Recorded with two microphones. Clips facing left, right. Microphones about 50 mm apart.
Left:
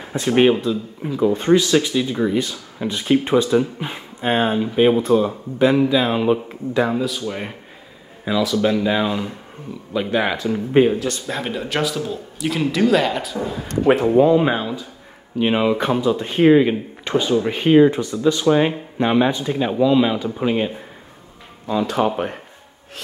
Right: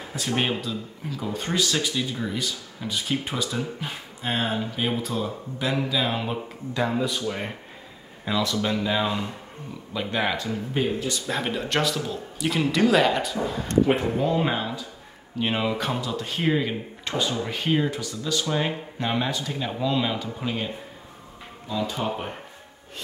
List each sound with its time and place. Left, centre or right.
0.1 s speech: left
2.0 s speech: left
6.9 s speech: centre
11.2 s speech: centre
14.2 s speech: centre
21.8 s speech: left